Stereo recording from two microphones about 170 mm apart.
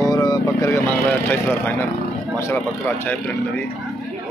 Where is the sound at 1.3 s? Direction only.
10° left (ahead or behind).